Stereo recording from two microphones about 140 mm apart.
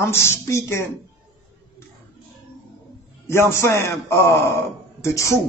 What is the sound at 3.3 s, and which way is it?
A man's voice, 20° left (ahead or behind).